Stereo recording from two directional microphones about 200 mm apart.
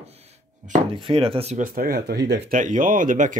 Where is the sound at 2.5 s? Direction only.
40° right (ahead or behind).